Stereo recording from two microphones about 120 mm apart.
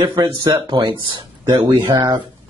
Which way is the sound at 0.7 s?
40° right (ahead or behind).